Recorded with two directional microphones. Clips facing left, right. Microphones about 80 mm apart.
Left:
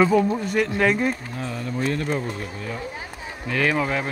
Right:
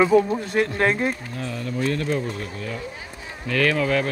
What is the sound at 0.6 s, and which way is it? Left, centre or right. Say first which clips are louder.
Speech: even; right.